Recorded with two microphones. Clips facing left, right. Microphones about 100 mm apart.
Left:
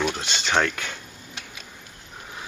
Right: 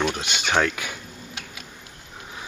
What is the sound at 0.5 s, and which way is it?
Speech, 10° right (ahead or behind).